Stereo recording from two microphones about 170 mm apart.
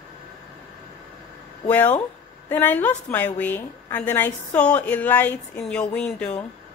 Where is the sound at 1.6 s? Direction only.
10° left (ahead or behind).